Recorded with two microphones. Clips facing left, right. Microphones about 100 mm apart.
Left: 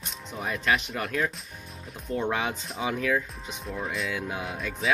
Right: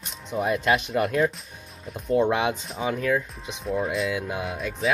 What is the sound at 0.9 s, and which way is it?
Speech, 15° right (ahead or behind).